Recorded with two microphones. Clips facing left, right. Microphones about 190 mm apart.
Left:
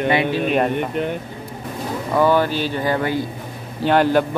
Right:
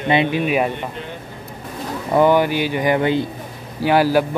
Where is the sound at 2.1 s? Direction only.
15° right (ahead or behind).